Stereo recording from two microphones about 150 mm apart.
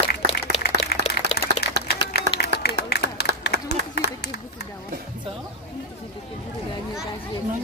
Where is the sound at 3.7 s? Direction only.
90° left.